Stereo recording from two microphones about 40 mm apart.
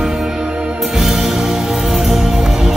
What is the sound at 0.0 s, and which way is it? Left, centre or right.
Music, centre.